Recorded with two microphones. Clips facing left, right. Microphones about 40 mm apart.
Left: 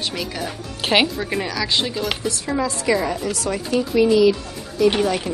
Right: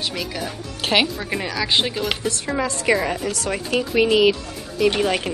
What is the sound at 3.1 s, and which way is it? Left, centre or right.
Speech, right.